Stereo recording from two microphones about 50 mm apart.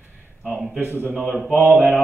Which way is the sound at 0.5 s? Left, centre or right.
Centre.